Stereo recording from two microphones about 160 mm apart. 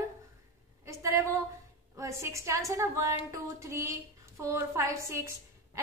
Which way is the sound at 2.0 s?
20° right (ahead or behind).